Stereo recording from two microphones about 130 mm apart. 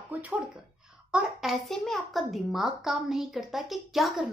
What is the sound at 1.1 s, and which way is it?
A child's voice, centre (ahead or behind).